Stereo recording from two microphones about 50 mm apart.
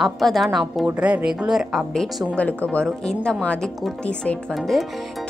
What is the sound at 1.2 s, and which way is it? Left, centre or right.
Speech, centre.